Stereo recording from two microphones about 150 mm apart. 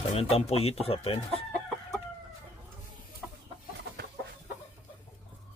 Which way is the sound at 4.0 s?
90° right.